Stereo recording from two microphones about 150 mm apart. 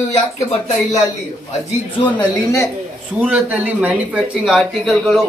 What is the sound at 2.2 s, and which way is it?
Speech, 20° left (ahead or behind).